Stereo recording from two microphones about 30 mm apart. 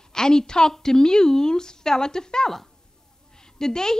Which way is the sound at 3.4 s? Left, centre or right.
Centre.